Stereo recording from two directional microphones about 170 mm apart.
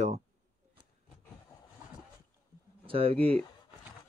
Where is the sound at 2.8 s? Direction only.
35° right (ahead or behind).